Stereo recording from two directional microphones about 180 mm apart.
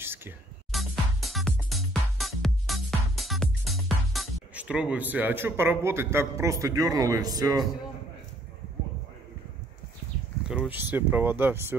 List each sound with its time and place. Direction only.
0.0 s music: 15° right (ahead or behind)
0.7 s music: centre (ahead or behind)
6.6 s speech: 20° right (ahead or behind)
10.5 s speech: 10° right (ahead or behind)